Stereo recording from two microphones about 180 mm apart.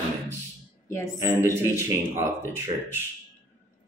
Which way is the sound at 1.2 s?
15° right (ahead or behind).